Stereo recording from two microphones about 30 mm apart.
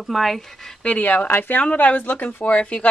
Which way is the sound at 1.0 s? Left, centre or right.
Left.